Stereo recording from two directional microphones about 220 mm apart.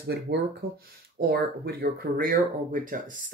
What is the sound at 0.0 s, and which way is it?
Speech, 45° right (ahead or behind).